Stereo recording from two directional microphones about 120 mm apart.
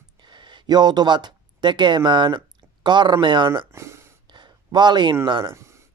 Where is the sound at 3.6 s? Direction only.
25° right (ahead or behind).